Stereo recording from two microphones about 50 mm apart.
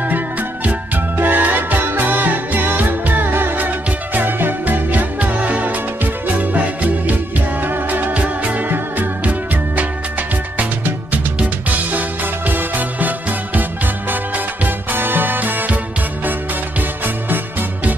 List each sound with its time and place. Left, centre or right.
1.1 s music: right
10.6 s music: right
12.4 s music: right
14.3 s music: right